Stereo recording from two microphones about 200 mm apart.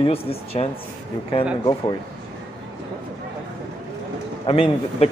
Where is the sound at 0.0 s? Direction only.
30° left (ahead or behind).